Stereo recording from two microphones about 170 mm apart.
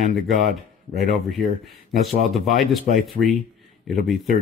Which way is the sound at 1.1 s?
Centre (ahead or behind).